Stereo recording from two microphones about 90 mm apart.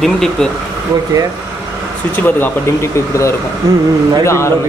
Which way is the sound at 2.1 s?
20° left (ahead or behind).